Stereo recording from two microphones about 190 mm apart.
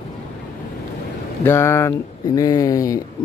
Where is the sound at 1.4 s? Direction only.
15° left (ahead or behind).